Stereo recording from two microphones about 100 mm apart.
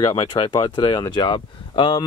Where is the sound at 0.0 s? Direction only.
50° left (ahead or behind).